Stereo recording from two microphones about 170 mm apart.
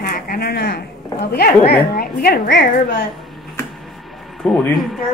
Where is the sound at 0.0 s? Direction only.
60° left (ahead or behind).